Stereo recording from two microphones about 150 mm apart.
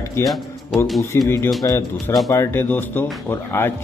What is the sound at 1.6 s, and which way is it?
Speech, 15° left (ahead or behind).